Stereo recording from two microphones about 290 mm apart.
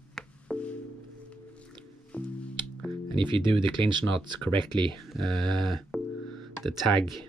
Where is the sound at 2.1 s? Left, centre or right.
Centre.